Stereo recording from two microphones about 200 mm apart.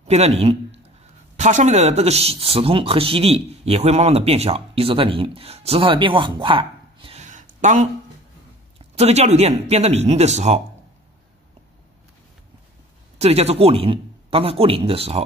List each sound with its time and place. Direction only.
0.0 s a man's voice: 30° right (ahead or behind)
13.2 s speech: 30° right (ahead or behind)